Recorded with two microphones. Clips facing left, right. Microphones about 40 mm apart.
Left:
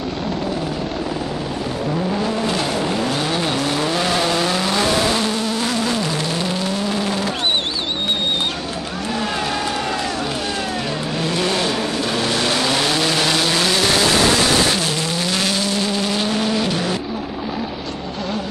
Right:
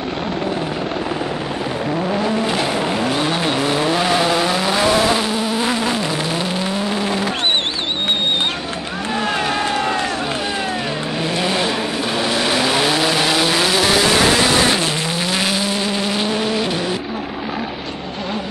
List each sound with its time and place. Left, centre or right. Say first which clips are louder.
2.4 s vehicle: right 1 dB; centre
9.2 s a sound: right 4 dB; right
11.3 s vehicle: right 1 dB; centre
14.7 s vehicle: right 2 dB; centre